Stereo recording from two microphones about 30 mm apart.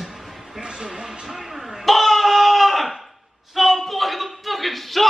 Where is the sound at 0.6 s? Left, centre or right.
Right.